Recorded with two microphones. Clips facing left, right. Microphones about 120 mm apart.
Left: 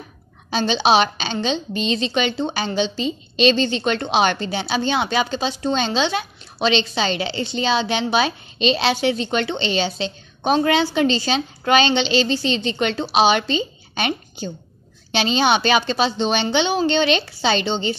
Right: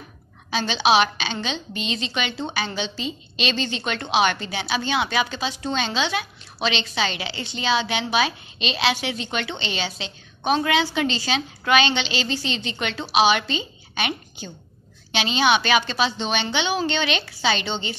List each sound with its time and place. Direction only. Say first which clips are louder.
0.5 s a woman's voice: left 3 dB; 30° left (ahead or behind)